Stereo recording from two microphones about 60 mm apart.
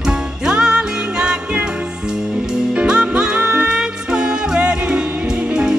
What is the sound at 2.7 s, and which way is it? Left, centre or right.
Music, centre.